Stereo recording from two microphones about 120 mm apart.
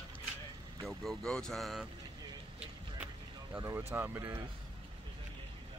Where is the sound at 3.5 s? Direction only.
20° right (ahead or behind).